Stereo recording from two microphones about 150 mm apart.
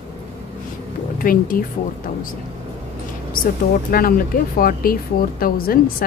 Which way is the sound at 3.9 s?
75° left (ahead or behind).